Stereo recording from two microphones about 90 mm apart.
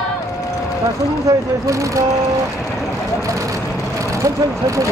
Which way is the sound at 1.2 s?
35° right (ahead or behind).